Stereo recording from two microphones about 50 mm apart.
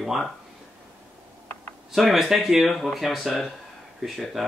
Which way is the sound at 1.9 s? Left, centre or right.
Centre.